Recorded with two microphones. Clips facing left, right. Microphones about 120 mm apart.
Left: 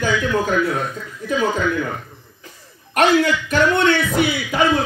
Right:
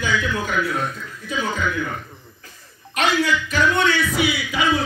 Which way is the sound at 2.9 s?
55° left (ahead or behind).